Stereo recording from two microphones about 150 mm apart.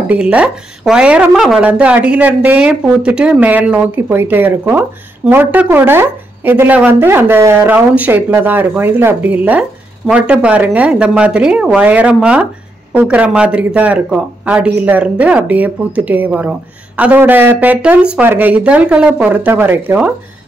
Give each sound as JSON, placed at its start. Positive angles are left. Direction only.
{"t": 0.1, "sound": "speech", "side_deg": -10}